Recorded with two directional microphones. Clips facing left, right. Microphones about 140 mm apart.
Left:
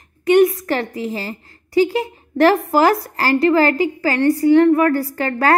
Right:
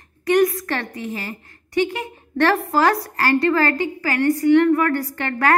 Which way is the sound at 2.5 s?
25° left (ahead or behind).